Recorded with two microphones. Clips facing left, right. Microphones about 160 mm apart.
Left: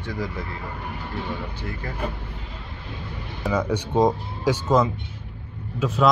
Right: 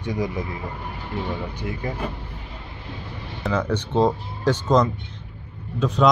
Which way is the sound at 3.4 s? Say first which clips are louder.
Even; 10° left (ahead or behind).